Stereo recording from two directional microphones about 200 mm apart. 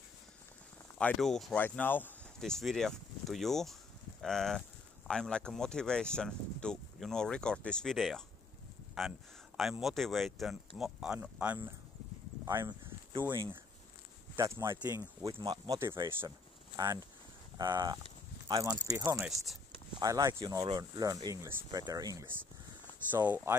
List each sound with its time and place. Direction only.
0.9 s speech: 5° left (ahead or behind)
12.4 s speech: 20° right (ahead or behind)
19.2 s speech: centre (ahead or behind)
20.0 s speech: 15° right (ahead or behind)